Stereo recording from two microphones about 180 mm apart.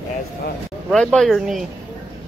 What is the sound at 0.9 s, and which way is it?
Speech, centre (ahead or behind).